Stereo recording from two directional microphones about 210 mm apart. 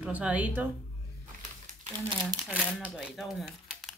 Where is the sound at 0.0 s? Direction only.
5° right (ahead or behind).